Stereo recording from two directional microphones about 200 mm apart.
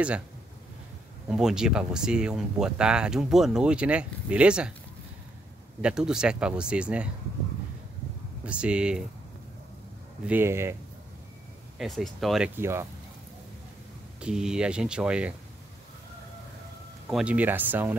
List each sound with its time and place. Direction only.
1.3 s speech: 5° right (ahead or behind)
5.8 s speech: 5° right (ahead or behind)
8.5 s speech: 5° right (ahead or behind)
10.2 s speech: 10° right (ahead or behind)
11.8 s speech: centre (ahead or behind)
12.5 s speech: 10° right (ahead or behind)
14.2 s speech: 5° right (ahead or behind)
17.1 s speech: 5° right (ahead or behind)